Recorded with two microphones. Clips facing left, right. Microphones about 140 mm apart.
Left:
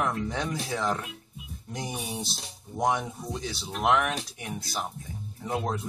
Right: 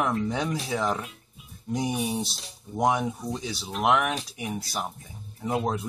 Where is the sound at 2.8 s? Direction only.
5° right (ahead or behind).